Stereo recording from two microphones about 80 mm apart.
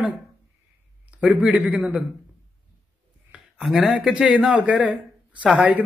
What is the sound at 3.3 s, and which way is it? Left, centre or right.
Speech, centre.